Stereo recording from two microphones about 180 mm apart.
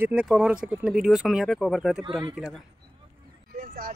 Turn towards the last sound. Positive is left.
turn(degrees=-50)  # may be behind; listen again after turning